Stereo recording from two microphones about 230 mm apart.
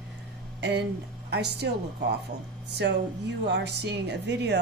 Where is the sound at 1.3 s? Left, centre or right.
Right.